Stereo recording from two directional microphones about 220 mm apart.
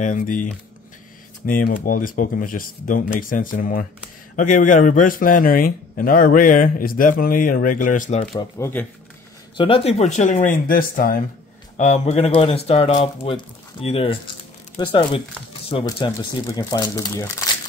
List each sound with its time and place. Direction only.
0.0 s a man's voice: 35° left (ahead or behind)
8.4 s speech: 10° left (ahead or behind)
9.6 s a man's voice: 25° left (ahead or behind)